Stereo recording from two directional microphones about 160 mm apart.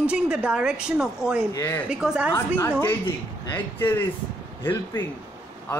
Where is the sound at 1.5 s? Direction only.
15° left (ahead or behind).